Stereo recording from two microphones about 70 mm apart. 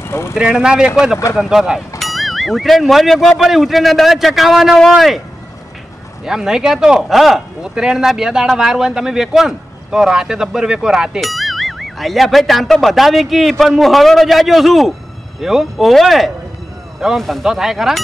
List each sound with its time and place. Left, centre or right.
0.0 s vehicle: left
0.3 s a man's voice: centre
6.2 s speech: centre